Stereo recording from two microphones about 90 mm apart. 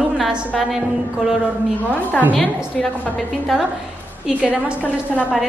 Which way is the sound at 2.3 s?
10° left (ahead or behind).